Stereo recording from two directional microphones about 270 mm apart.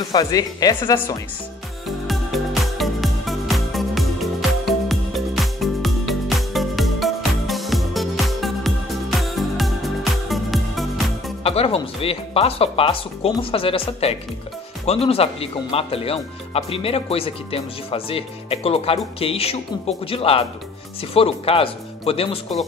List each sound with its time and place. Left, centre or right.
0.1 s speech: centre
2.0 s music: centre
11.4 s speech: left